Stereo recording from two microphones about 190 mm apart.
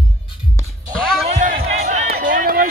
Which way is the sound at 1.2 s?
40° right (ahead or behind).